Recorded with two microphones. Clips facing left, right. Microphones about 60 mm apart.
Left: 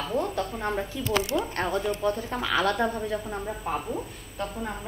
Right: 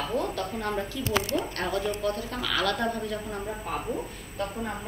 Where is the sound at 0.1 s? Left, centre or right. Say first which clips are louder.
Left 1 dB; centre.